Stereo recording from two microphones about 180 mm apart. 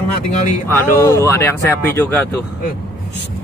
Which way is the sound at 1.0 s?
15° left (ahead or behind).